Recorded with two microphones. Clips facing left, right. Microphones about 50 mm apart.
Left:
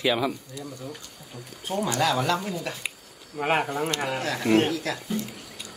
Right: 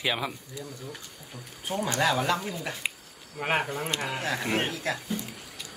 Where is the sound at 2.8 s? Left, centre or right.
Right.